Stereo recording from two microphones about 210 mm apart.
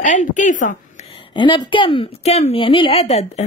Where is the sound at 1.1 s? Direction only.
25° left (ahead or behind).